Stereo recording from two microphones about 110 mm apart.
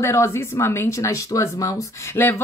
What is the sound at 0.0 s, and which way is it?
Speech, 25° left (ahead or behind).